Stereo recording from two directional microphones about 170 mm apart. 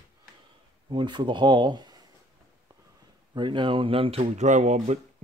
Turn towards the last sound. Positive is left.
turn(degrees=-45)  # may be behind; listen again after turning